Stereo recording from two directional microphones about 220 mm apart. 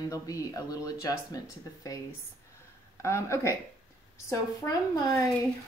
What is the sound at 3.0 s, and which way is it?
Speech, 15° left (ahead or behind).